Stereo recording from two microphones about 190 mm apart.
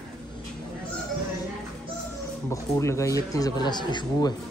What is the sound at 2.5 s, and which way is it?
Speech, 15° left (ahead or behind).